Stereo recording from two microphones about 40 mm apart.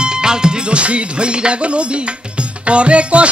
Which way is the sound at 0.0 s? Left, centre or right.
Centre.